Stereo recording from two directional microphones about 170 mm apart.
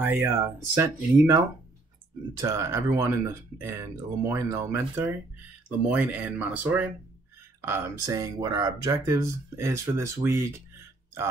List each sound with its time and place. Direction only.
0.0 s speech: 10° right (ahead or behind)